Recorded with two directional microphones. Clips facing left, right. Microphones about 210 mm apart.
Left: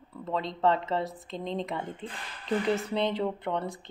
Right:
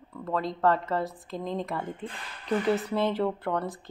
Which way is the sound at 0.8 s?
Centre (ahead or behind).